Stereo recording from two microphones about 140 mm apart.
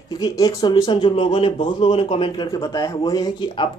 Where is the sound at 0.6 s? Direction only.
35° left (ahead or behind).